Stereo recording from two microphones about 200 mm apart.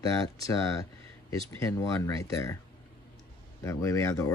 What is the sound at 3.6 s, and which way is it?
Speech, 15° left (ahead or behind).